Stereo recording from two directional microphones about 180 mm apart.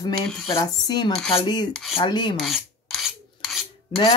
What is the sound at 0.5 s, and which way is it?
Speech, 20° left (ahead or behind).